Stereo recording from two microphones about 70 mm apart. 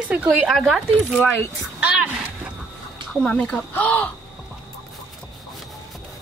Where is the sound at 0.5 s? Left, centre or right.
Centre.